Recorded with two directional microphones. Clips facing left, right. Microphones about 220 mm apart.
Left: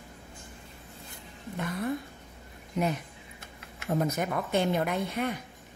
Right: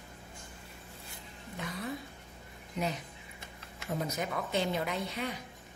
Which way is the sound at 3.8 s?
55° left (ahead or behind).